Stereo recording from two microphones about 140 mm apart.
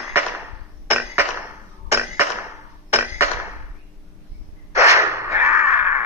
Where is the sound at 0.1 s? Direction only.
15° right (ahead or behind).